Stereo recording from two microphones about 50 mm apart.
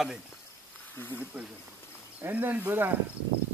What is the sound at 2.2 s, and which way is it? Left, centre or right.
Speech, right.